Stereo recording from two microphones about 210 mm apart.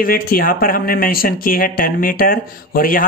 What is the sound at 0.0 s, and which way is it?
Speech, 45° left (ahead or behind).